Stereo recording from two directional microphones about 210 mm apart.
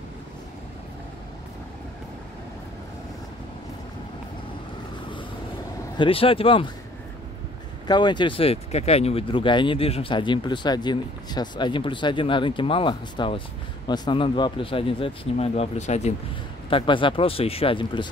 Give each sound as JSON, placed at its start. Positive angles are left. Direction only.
{"t": 5.9, "sound": "speech", "side_deg": 25}
{"t": 7.8, "sound": "speech", "side_deg": 20}